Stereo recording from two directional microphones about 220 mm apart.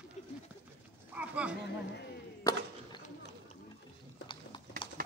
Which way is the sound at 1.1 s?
5° right (ahead or behind).